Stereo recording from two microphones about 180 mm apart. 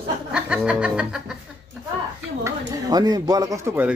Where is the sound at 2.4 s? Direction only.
20° right (ahead or behind).